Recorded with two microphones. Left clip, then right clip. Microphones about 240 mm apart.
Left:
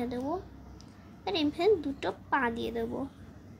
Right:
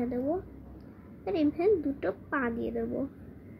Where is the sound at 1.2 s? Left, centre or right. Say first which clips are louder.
Right 1 dB; centre.